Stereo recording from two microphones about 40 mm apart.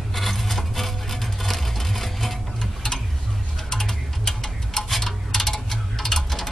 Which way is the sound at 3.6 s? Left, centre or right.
Centre.